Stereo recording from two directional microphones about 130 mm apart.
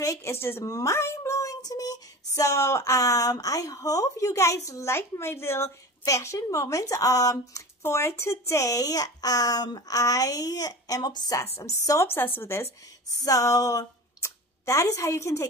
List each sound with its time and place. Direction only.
0.0 s a woman's voice: 20° left (ahead or behind)
11.4 s speech: 55° left (ahead or behind)
11.8 s a woman's voice: 25° left (ahead or behind)